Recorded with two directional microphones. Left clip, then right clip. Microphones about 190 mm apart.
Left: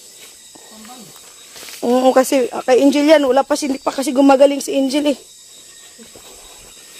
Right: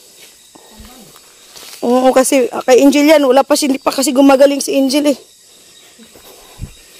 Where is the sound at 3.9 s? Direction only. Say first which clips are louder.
Right 2 dB; 25° right (ahead or behind).